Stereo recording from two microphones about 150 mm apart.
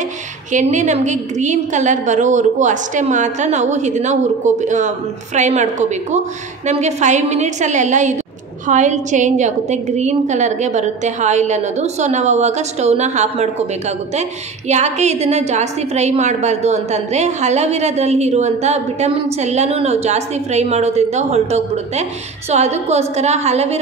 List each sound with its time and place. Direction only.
0.5 s a woman's voice: 55° right (ahead or behind)